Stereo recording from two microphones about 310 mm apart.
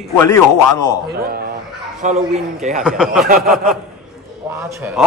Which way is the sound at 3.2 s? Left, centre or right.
Right.